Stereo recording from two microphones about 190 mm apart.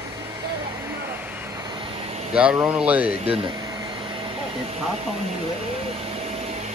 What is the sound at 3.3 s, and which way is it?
Air conditioning, 25° right (ahead or behind).